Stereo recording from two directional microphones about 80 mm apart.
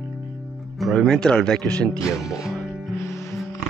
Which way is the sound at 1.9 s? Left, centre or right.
Left.